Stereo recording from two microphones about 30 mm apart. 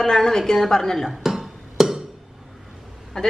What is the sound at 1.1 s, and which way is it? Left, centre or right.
Music, centre.